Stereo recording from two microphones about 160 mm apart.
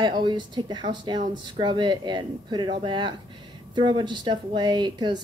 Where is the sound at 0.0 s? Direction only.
30° right (ahead or behind).